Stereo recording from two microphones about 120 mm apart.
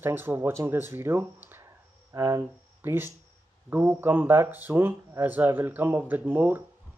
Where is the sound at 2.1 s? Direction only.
25° right (ahead or behind).